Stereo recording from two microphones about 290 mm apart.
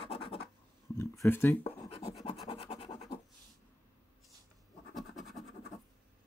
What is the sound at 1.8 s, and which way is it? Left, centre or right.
Scratch, centre.